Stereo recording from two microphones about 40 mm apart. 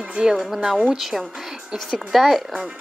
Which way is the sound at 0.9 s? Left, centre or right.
Centre.